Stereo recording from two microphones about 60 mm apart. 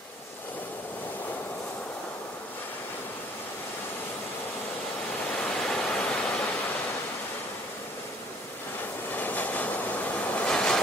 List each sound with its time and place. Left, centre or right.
5.4 s waterfall: centre
9.1 s train: left
10.5 s vehicle: centre